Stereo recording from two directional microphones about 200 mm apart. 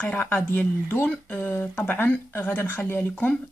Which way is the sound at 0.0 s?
10° left (ahead or behind).